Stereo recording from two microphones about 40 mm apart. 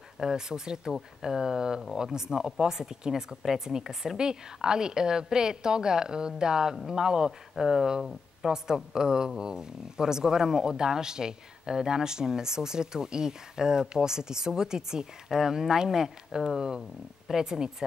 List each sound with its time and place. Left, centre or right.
0.2 s speech: centre
7.5 s speech: centre